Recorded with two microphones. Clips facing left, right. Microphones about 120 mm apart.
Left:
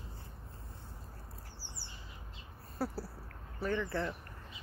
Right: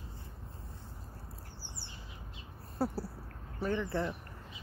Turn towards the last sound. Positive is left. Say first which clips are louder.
# right 1 dB
turn(degrees=-20)  # may be behind; listen again after turning